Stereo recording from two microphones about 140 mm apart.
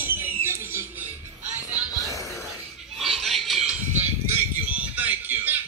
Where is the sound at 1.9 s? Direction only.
25° left (ahead or behind).